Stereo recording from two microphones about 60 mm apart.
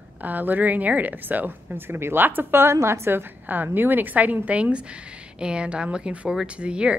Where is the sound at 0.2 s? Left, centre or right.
Right.